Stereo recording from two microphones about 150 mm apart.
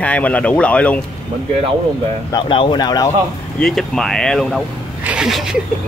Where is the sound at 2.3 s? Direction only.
35° left (ahead or behind).